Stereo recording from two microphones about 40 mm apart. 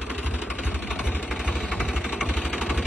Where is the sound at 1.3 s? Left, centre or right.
Centre.